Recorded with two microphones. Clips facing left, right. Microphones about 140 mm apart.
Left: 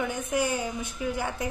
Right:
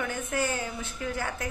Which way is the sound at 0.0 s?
15° left (ahead or behind).